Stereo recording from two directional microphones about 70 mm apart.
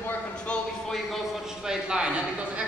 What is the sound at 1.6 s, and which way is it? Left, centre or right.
Speech, centre.